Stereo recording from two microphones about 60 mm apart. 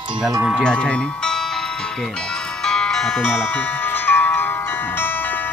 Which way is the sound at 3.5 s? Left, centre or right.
Left.